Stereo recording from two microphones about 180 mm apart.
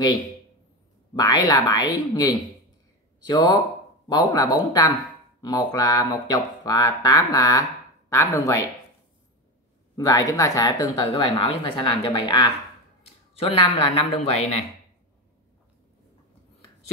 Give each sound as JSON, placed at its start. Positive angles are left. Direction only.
{"t": 1.1, "sound": "speech", "side_deg": 20}
{"t": 9.9, "sound": "speech", "side_deg": 20}
{"t": 13.4, "sound": "speech", "side_deg": 35}